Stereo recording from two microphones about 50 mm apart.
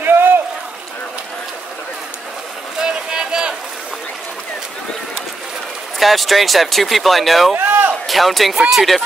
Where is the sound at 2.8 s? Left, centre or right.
Centre.